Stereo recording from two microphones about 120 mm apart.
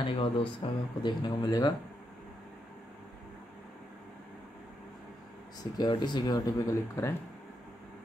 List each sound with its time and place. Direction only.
0.0 s speech: 45° left (ahead or behind)
5.8 s speech: 35° left (ahead or behind)